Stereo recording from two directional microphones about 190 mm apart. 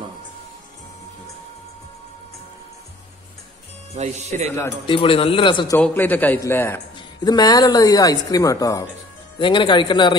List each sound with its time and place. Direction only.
3.9 s speech: 35° right (ahead or behind)
4.8 s speech: 30° left (ahead or behind)
5.8 s a man's voice: 10° left (ahead or behind); by 10.1 s 25° left (ahead or behind)